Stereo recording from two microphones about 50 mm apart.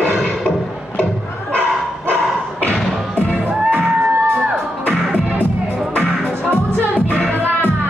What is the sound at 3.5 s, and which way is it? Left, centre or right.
Music, right.